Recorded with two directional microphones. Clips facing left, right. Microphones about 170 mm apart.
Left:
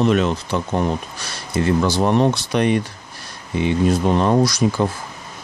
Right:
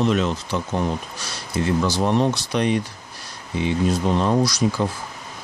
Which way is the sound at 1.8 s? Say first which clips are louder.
Left 3 dB; 55° left (ahead or behind).